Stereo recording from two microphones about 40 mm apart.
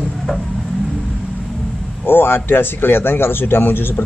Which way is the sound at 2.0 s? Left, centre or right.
Left.